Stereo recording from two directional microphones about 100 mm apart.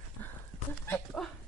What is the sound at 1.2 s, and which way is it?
Speech, 5° left (ahead or behind).